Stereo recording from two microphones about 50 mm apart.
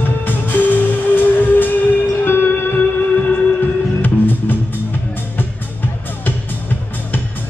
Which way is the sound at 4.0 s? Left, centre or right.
Left.